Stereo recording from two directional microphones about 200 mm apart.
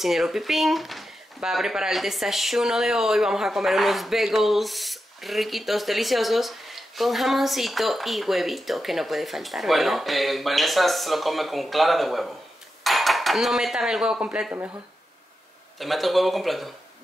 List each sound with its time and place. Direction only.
0.0 s speech: centre (ahead or behind)
15.8 s speech: centre (ahead or behind)